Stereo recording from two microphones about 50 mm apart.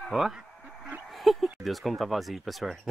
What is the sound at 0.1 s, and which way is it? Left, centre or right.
Speech, centre.